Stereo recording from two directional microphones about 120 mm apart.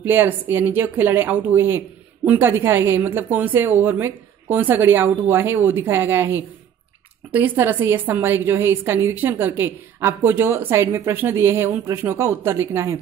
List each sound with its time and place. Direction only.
0.0 s a woman's voice: 20° right (ahead or behind)